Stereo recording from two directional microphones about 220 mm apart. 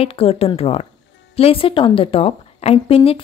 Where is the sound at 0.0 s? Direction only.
25° left (ahead or behind).